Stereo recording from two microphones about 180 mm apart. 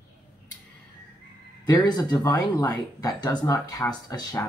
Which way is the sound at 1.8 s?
20° left (ahead or behind).